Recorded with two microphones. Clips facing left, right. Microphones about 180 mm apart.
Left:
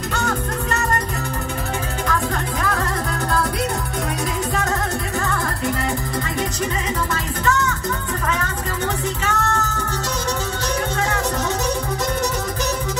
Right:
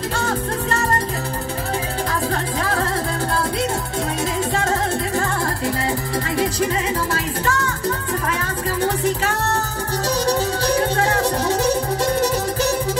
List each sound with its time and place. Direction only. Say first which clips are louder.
8.8 s music: right 4 dB; 35° right (ahead or behind)
10.7 s music: right 3 dB; 30° right (ahead or behind)